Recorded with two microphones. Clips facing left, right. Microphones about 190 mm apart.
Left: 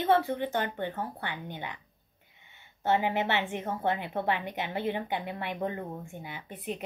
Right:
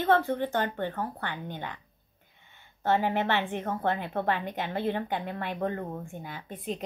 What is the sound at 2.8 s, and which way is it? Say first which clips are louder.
Speech: right 1 dB; 15° left (ahead or behind).